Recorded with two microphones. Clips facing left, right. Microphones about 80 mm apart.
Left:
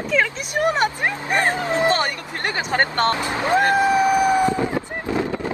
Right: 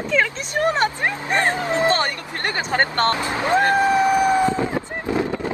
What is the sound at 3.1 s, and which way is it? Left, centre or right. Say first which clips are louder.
Speech: even; right.